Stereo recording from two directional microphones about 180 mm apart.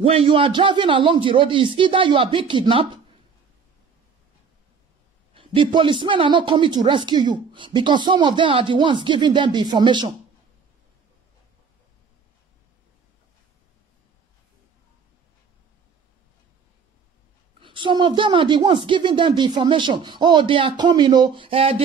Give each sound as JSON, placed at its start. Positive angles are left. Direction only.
{"t": 0.0, "sound": "speech", "side_deg": -30}
{"t": 5.3, "sound": "speech", "side_deg": -30}
{"t": 17.6, "sound": "speech", "side_deg": -25}